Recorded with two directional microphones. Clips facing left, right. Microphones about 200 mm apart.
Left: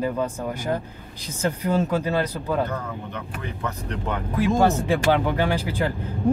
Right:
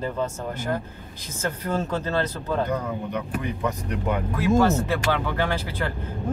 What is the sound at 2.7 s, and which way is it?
Speech, 15° right (ahead or behind).